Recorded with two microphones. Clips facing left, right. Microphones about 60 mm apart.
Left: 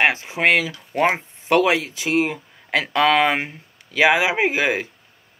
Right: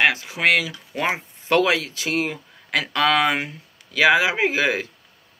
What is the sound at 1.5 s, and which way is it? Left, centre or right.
Speech, left.